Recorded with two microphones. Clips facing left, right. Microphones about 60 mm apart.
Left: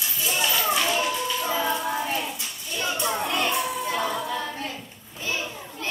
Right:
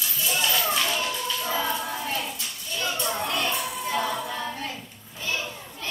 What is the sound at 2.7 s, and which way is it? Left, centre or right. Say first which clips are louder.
Child singing: left 2 dB; left.